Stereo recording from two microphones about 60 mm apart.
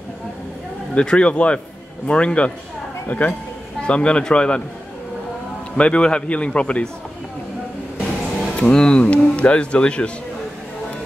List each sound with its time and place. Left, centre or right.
0.9 s a man's voice: centre
5.8 s a man's voice: centre
8.5 s a man's voice: centre